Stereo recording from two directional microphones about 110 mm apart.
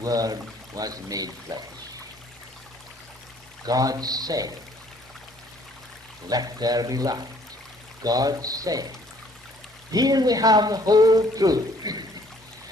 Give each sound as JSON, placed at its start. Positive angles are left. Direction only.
{"t": 0.0, "sound": "speech", "side_deg": -35}
{"t": 3.6, "sound": "speech", "side_deg": -35}
{"t": 6.2, "sound": "speech", "side_deg": -35}
{"t": 9.8, "sound": "speech", "side_deg": -35}